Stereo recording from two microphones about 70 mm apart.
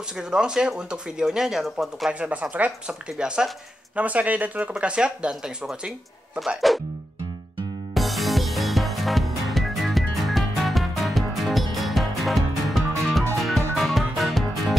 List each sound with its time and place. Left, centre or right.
0.2 s speech: centre
2.1 s speech: centre
7.9 s music: centre